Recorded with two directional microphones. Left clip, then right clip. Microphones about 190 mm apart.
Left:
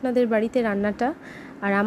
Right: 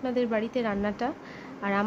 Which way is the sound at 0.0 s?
25° left (ahead or behind).